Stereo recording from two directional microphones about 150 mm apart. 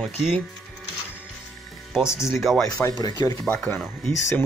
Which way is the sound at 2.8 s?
25° left (ahead or behind).